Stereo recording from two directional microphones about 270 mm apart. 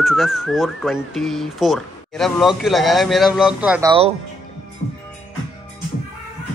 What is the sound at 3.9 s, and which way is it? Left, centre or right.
Speech, right.